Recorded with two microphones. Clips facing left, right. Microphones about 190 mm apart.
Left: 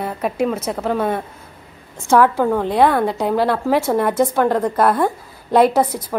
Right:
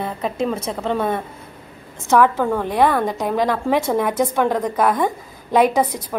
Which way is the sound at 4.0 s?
10° right (ahead or behind).